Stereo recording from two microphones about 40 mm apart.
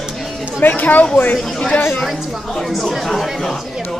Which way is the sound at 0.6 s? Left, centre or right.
Left.